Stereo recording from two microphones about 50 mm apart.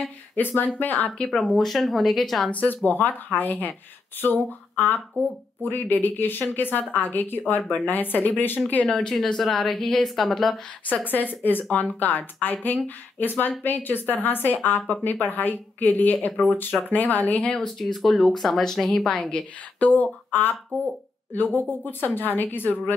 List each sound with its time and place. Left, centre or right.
0.4 s a woman's voice: left
1.1 s speech: centre
1.4 s a woman's voice: centre
2.5 s a woman's voice: left
9.1 s a woman's voice: centre
11.1 s a woman's voice: left
17.6 s speech: centre
19.3 s a woman's voice: left